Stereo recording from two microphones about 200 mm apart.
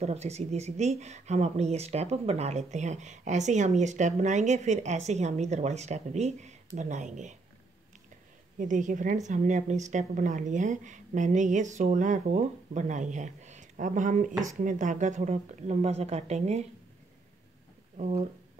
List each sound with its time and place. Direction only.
0.0 s speech: 30° right (ahead or behind)
8.5 s speech: 40° right (ahead or behind)
17.9 s speech: 35° right (ahead or behind)